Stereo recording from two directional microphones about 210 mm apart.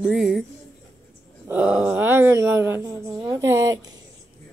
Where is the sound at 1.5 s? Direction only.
5° right (ahead or behind).